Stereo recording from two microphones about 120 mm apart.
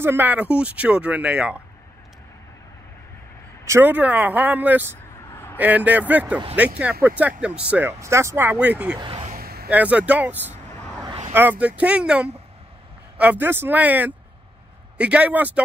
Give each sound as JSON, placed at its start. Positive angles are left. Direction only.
{"t": 0.0, "sound": "speech", "side_deg": -15}
{"t": 3.6, "sound": "speech", "side_deg": -20}
{"t": 5.3, "sound": "a sound", "side_deg": 20}
{"t": 5.6, "sound": "speech", "side_deg": -15}
{"t": 8.0, "sound": "speech", "side_deg": -25}
{"t": 9.0, "sound": "a sound", "side_deg": -50}
{"t": 9.7, "sound": "speech", "side_deg": -15}